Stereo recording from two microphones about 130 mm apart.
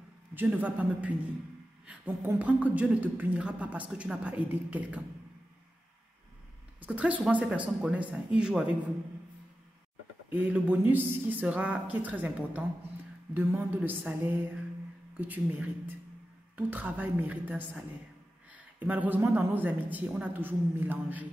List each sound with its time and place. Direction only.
0.3 s a woman's voice: 15° right (ahead or behind)
6.8 s a woman's voice: 10° right (ahead or behind)
10.3 s a woman's voice: 10° right (ahead or behind)